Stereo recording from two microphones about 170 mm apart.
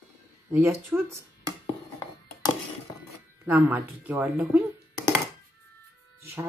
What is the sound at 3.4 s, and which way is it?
Speech, 10° right (ahead or behind).